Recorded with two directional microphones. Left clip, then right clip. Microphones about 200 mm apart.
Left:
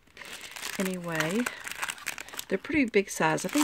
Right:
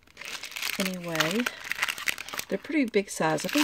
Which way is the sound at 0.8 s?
5° left (ahead or behind).